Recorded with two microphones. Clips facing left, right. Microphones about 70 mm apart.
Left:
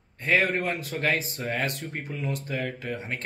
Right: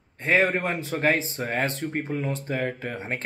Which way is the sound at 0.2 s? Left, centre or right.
Right.